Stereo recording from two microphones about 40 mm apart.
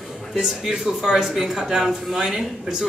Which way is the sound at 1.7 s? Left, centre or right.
Centre.